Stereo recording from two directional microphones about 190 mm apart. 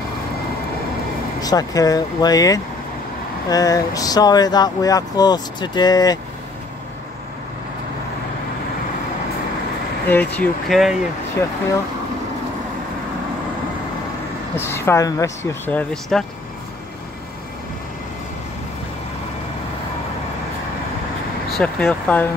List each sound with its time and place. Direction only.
1.4 s speech: 20° left (ahead or behind)
10.0 s speech: 10° left (ahead or behind)
14.5 s speech: 10° left (ahead or behind)
21.5 s speech: centre (ahead or behind)